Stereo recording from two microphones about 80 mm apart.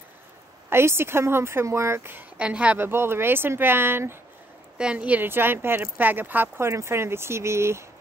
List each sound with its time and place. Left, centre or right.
0.7 s speech: right
2.3 s speech: centre
2.8 s speech: right
4.7 s speech: centre; by 7.8 s right